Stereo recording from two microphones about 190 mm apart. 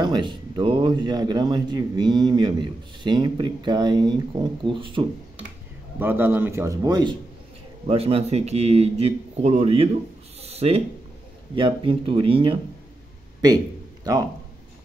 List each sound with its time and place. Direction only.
0.0 s speech: 25° right (ahead or behind)
5.9 s a man's voice: 10° right (ahead or behind); by 9.8 s 35° right (ahead or behind)
10.4 s a sound: 35° right (ahead or behind)
11.5 s speech: 25° right (ahead or behind)